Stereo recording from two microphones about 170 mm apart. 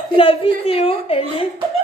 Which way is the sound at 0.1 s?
30° left (ahead or behind).